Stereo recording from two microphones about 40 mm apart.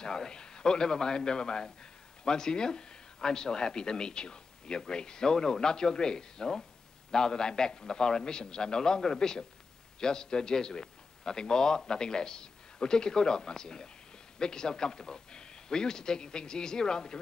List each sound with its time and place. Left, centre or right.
0.0 s speech: centre